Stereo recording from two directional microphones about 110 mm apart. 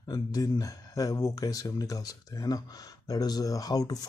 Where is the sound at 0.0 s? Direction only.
35° left (ahead or behind).